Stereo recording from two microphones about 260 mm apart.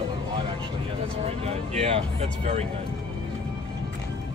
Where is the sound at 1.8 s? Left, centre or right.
Right.